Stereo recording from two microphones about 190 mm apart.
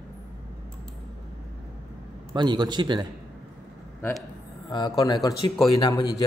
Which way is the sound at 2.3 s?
25° right (ahead or behind).